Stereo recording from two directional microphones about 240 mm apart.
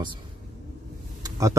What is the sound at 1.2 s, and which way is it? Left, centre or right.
Vehicle, centre.